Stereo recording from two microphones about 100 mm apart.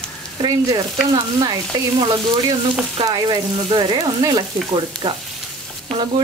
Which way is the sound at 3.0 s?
45° right (ahead or behind).